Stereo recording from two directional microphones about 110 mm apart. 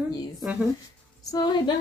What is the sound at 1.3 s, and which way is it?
Speech, 40° left (ahead or behind).